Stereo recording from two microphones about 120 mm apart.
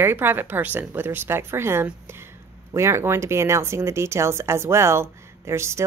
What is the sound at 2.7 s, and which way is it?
Speech, 25° right (ahead or behind).